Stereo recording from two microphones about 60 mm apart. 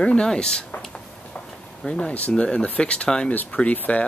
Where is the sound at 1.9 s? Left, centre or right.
Centre.